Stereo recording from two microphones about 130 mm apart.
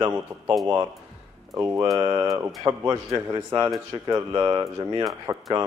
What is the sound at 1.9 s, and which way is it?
Speech, 30° right (ahead or behind).